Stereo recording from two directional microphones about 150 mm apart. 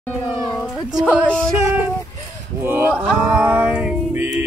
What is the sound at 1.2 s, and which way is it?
Music, 5° left (ahead or behind).